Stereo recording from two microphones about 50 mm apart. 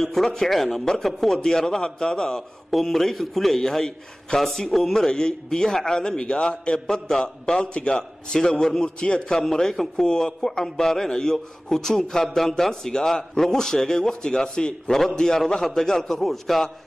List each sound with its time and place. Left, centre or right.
0.0 s a man's voice: centre
2.7 s a man's voice: centre